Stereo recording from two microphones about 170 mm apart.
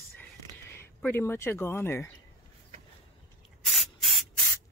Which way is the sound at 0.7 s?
15° left (ahead or behind).